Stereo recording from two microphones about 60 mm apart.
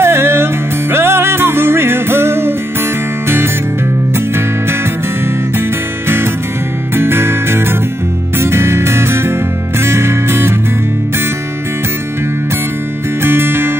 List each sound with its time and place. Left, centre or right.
0.0 s music: right
7.0 s music: right
13.2 s music: right